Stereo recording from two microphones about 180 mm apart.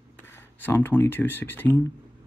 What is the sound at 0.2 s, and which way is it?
Speech, 10° left (ahead or behind).